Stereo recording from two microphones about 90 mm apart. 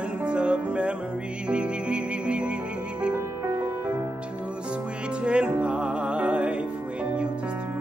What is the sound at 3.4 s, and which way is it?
Music, 25° right (ahead or behind).